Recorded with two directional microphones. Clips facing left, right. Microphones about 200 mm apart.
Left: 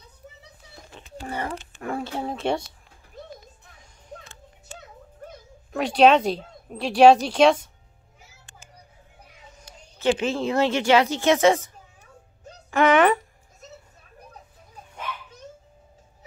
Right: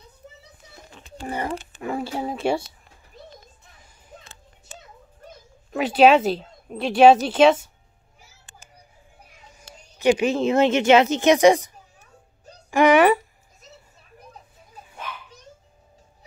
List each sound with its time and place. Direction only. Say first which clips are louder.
1.2 s speech: right 2 dB; 15° right (ahead or behind)
1.8 s speech: right 1 dB; 5° right (ahead or behind)
5.7 s speech: right 2 dB; 5° right (ahead or behind)
9.6 s a woman's voice: right 4 dB; 15° right (ahead or behind)
12.7 s a sound: right 3 dB; 10° right (ahead or behind)